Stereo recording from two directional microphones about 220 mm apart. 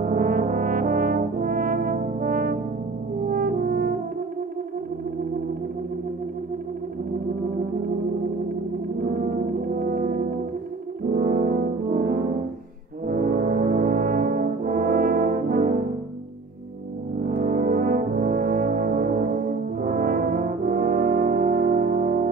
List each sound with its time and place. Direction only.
0.0 s brass instrument: 40° right (ahead or behind)
3.3 s french horn: 40° right (ahead or behind)
9.8 s brass instrument: 40° right (ahead or behind)
11.1 s french horn: 40° right (ahead or behind)
13.0 s brass instrument: 40° right (ahead or behind)
17.4 s brass instrument: 40° right (ahead or behind)